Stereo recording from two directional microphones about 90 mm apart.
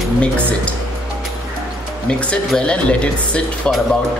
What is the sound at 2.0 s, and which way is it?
Speech, 10° left (ahead or behind).